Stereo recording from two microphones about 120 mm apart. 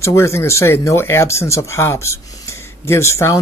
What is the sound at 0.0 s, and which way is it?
Speech, 25° left (ahead or behind).